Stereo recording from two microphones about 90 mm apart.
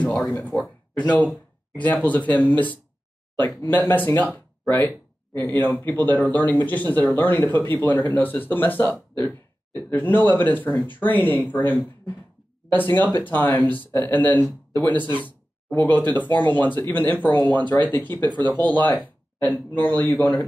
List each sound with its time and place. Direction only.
0.0 s a sound: 10° left (ahead or behind)
0.3 s speech: 15° left (ahead or behind)
5.3 s speech: 25° left (ahead or behind)